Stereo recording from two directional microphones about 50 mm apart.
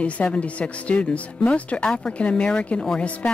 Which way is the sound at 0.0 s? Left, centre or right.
Left.